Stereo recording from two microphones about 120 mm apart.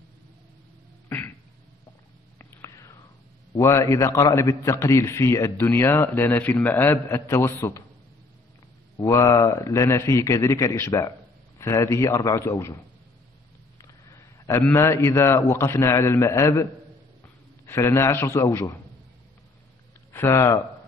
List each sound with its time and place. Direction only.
1.0 s a sound: 15° left (ahead or behind)
2.3 s whispering: 25° left (ahead or behind)
3.5 s a man's voice: 25° left (ahead or behind)
8.9 s a man's voice: 25° left (ahead or behind)
13.7 s a man's voice: 30° left (ahead or behind)
17.6 s a man's voice: 20° left (ahead or behind)
20.1 s speech: 20° left (ahead or behind)